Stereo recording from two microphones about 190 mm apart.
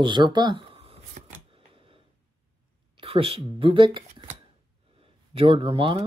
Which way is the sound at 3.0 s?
30° right (ahead or behind).